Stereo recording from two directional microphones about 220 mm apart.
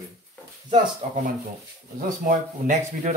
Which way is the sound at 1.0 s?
30° right (ahead or behind).